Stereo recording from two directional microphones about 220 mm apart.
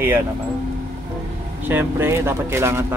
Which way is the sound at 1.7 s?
10° right (ahead or behind).